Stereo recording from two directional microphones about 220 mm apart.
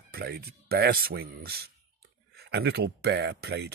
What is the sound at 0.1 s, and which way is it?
Speech, 45° right (ahead or behind).